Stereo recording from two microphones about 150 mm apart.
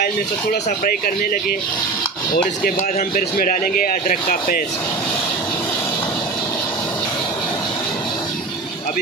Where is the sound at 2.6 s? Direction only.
65° left (ahead or behind).